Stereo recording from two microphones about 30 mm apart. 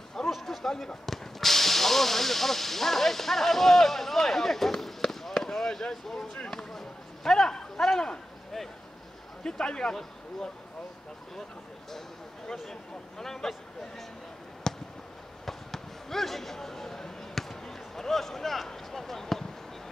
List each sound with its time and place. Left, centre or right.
0.3 s a sound: centre
1.0 s speech: centre
5.3 s fireworks: centre
6.3 s speech: left
6.7 s a sound: centre
9.4 s speech: left
13.2 s speech: centre
14.7 s a sound: centre
15.4 s basketball bounce: centre
18.9 s speech: centre